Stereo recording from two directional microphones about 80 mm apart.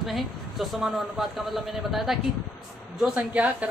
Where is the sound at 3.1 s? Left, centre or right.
Centre.